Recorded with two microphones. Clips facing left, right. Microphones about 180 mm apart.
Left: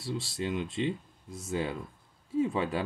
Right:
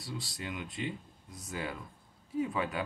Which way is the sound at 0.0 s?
25° left (ahead or behind).